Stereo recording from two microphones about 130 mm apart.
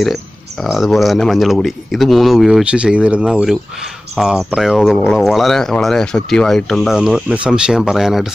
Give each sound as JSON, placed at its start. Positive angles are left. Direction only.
{"t": 0.0, "sound": "speech", "side_deg": 0}
{"t": 7.0, "sound": "speech", "side_deg": -5}